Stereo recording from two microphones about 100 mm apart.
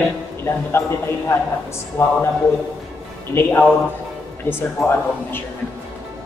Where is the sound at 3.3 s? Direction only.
25° left (ahead or behind).